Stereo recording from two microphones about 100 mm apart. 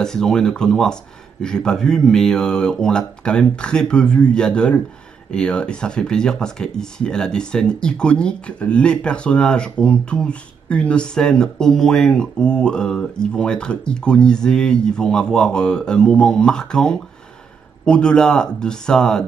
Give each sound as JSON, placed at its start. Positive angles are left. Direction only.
{"t": 0.0, "sound": "speech", "side_deg": 5}